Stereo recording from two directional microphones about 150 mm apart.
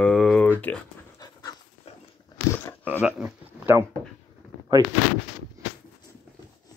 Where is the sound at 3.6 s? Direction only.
15° right (ahead or behind).